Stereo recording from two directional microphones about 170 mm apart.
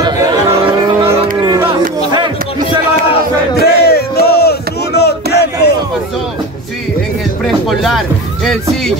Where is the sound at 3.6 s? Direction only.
65° left (ahead or behind).